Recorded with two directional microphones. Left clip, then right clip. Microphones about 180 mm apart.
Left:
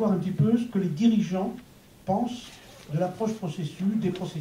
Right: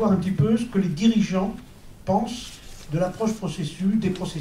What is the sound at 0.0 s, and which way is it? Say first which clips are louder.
Speech: right 3 dB; 25° right (ahead or behind).